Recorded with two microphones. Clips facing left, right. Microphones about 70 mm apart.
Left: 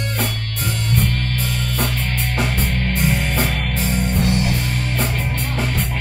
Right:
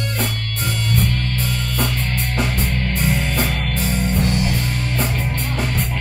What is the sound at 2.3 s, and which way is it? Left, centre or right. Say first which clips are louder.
Music: even; left.